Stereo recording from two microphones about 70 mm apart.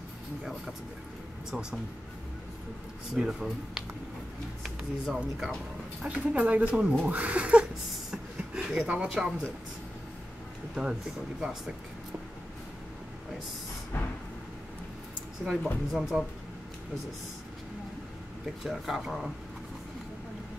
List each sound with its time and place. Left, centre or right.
1.5 s speech: centre
3.2 s speech: centre
5.1 s speech: centre
6.0 s speech: centre
8.1 s a sound: centre
8.8 s speech: centre
10.7 s speech: centre
13.9 s vehicle: left
15.5 s speech: centre
18.6 s speech: centre